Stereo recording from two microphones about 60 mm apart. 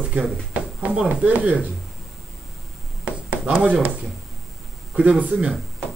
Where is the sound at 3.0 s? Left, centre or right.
Right.